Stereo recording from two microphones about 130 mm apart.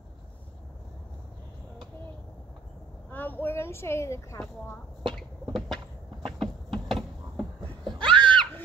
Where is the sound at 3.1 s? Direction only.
15° left (ahead or behind).